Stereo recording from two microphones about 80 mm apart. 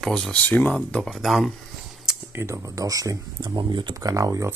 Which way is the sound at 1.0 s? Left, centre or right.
Centre.